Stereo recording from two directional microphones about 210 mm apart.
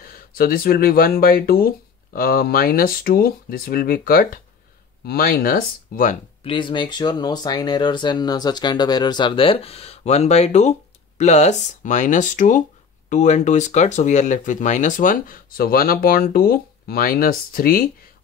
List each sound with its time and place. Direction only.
0.0 s speech: 45° left (ahead or behind)
6.4 s speech: 25° left (ahead or behind); by 17.8 s 45° left (ahead or behind)